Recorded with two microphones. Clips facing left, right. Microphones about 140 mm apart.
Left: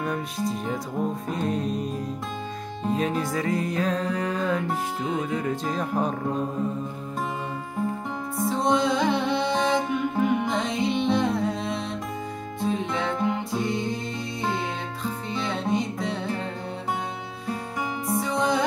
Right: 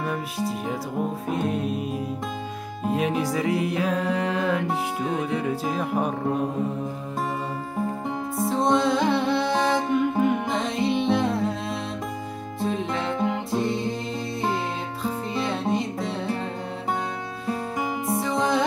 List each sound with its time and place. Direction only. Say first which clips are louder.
0.0 s music: even; 5° right (ahead or behind)
4.1 s music: right 2 dB; 70° right (ahead or behind)
4.4 s music: right 1 dB; 10° right (ahead or behind)
8.5 s music: right 1 dB; centre (ahead or behind)
15.3 s music: even; centre (ahead or behind)
18.1 s music: even; centre (ahead or behind)